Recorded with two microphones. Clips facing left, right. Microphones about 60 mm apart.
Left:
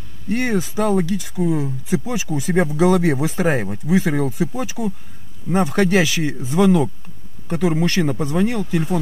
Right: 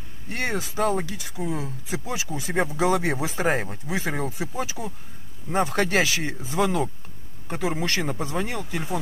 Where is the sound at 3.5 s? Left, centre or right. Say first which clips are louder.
Left 5 dB; centre.